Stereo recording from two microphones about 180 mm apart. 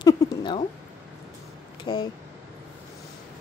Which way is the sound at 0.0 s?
25° left (ahead or behind).